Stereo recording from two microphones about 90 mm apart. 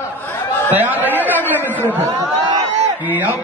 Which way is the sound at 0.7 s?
20° right (ahead or behind).